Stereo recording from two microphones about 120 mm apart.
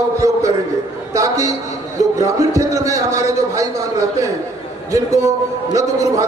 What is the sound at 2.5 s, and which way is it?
Speech, 30° right (ahead or behind).